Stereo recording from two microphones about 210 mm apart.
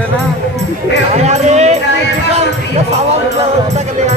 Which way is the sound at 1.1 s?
30° right (ahead or behind).